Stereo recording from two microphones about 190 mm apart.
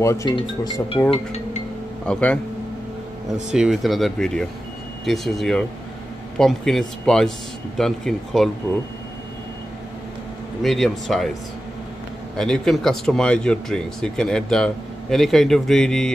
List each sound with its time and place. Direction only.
0.0 s speech: 15° left (ahead or behind)
2.0 s speech: 5° left (ahead or behind)
10.6 s speech: centre (ahead or behind)
12.4 s speech: centre (ahead or behind)